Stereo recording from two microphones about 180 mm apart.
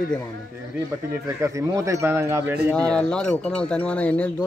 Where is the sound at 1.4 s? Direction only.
15° right (ahead or behind).